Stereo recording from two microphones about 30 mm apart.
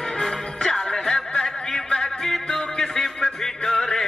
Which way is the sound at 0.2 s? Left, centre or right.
Centre.